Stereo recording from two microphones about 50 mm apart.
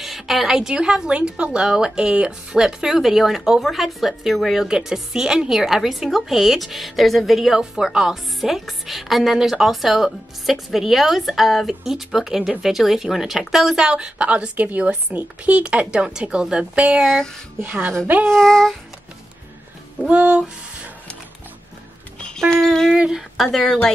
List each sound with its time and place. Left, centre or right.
0.0 s speech: centre
4.6 s a woman's voice: centre
17.0 s speech: centre
17.6 s a woman's voice: right
18.3 s speech: centre
20.1 s speech: right
22.4 s speech: centre